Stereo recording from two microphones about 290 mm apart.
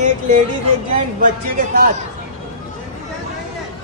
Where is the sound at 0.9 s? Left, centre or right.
Right.